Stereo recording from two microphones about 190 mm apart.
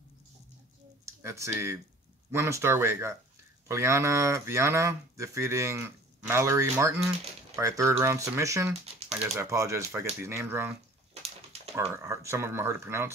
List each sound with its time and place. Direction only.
1.0 s speech: 15° right (ahead or behind)
11.2 s a sound: 35° right (ahead or behind)
11.9 s speech: 15° right (ahead or behind)